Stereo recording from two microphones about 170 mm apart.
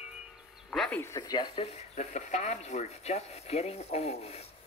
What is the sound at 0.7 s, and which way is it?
Speech, centre (ahead or behind).